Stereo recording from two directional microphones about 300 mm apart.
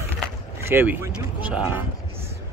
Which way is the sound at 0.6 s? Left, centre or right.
Centre.